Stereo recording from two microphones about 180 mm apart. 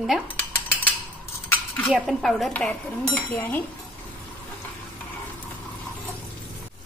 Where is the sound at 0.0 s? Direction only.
Centre (ahead or behind).